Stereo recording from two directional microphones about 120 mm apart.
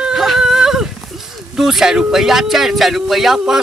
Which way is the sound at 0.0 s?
Centre (ahead or behind).